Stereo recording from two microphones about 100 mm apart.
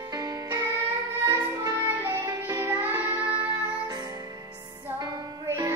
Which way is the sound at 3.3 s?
15° right (ahead or behind).